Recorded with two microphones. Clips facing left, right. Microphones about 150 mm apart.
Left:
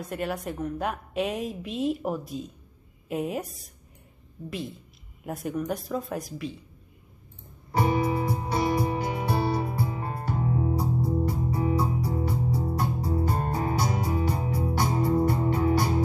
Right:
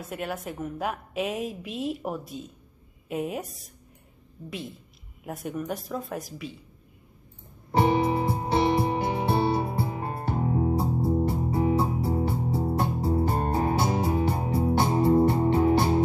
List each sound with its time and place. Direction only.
0.0 s a woman's voice: centre (ahead or behind)
7.7 s music: 25° right (ahead or behind)